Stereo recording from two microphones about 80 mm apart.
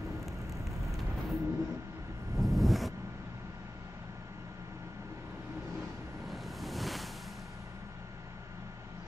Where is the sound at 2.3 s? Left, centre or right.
Centre.